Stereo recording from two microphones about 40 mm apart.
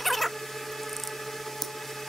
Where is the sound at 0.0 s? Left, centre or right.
Centre.